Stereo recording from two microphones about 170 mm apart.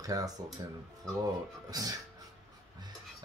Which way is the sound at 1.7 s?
20° right (ahead or behind).